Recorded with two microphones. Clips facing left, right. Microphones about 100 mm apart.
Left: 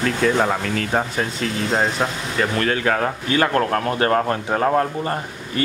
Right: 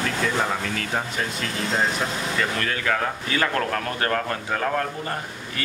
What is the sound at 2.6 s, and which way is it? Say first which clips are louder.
Speech: left 5 dB; 40° left (ahead or behind).